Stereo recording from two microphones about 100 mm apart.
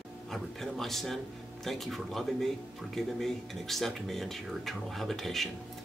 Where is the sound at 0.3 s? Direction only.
5° left (ahead or behind).